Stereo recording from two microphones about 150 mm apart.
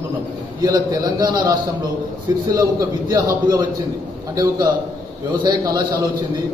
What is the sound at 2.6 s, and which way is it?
A man's voice, 20° right (ahead or behind).